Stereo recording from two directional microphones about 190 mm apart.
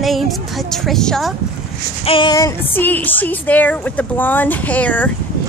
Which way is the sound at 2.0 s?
25° left (ahead or behind).